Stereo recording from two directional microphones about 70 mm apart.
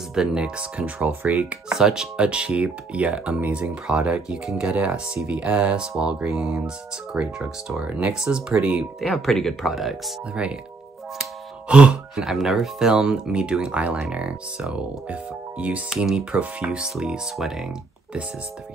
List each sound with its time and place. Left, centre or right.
0.1 s speech: centre
1.8 s speech: centre
9.0 s speech: centre
10.3 s speech: centre
11.7 s speech: centre
12.2 s speech: centre; by 15.8 s right
15.9 s speech: centre